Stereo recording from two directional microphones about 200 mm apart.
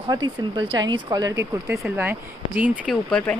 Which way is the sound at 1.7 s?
5° right (ahead or behind).